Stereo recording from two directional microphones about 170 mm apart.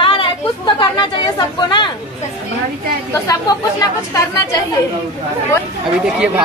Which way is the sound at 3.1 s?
20° left (ahead or behind).